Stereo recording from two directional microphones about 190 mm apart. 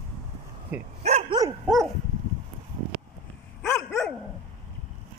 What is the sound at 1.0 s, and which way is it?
Dog, 35° right (ahead or behind).